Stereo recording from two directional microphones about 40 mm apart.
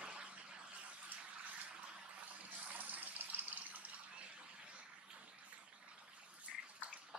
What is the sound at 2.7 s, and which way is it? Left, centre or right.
Water, right.